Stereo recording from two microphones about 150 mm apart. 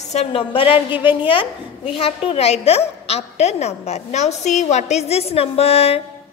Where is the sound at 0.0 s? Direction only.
45° left (ahead or behind).